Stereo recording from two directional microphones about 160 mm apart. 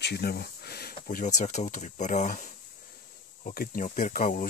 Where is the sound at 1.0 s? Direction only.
50° left (ahead or behind).